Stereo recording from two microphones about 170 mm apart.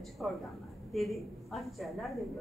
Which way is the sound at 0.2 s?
Centre (ahead or behind).